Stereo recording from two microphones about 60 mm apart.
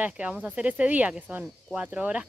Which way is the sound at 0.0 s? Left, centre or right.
Right.